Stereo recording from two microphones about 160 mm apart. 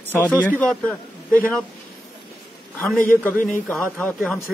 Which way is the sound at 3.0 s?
10° left (ahead or behind).